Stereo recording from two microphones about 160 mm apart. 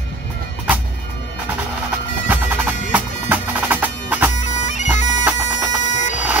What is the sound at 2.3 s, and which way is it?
Music, 10° right (ahead or behind).